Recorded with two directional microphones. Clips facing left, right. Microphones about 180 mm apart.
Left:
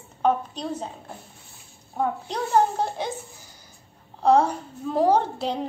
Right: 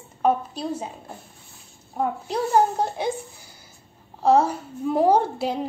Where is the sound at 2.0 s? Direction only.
10° right (ahead or behind).